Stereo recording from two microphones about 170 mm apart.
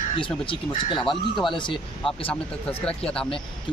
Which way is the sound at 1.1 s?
Centre (ahead or behind).